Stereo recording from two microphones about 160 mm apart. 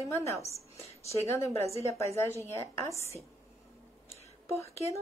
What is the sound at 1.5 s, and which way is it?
Speech, 40° right (ahead or behind).